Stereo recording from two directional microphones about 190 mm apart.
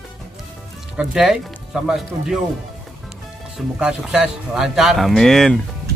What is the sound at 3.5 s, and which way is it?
Speech, 5° right (ahead or behind).